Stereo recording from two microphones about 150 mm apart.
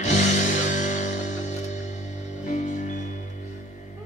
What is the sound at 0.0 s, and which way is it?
Music, 50° left (ahead or behind).